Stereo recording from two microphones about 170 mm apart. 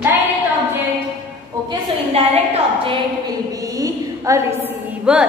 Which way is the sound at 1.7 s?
35° right (ahead or behind).